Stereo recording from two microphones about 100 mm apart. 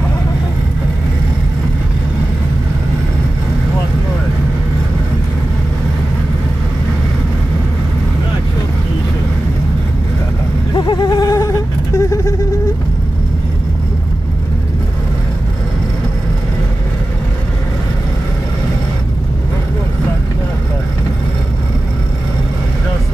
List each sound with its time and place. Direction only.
10.7 s vehicle: 50° left (ahead or behind); by 12.4 s 30° left (ahead or behind)